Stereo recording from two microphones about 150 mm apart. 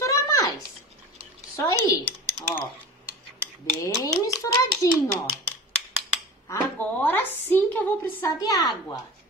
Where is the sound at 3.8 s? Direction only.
20° left (ahead or behind).